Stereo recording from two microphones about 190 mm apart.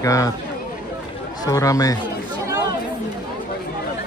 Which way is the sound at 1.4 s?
15° left (ahead or behind).